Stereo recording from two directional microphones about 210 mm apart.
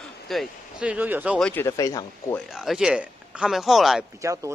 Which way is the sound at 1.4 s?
10° left (ahead or behind).